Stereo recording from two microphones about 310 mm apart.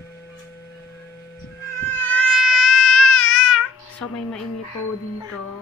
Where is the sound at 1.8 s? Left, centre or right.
Centre.